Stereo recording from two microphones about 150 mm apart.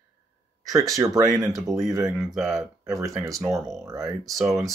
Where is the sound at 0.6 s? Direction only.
20° right (ahead or behind).